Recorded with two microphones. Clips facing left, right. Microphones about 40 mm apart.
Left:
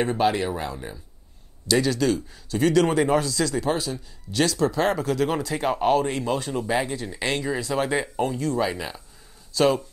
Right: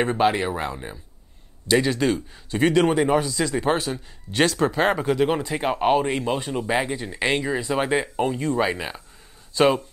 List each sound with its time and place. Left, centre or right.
0.0 s speech: right
2.9 s speech: centre
3.6 s speech: right